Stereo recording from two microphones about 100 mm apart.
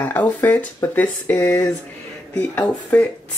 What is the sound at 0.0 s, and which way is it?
Speech, 20° left (ahead or behind).